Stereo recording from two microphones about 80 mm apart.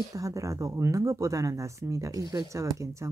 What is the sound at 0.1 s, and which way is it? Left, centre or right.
Speech, right.